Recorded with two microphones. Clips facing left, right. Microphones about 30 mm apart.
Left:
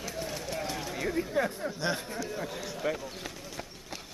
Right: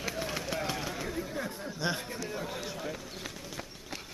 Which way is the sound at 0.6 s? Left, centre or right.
Centre.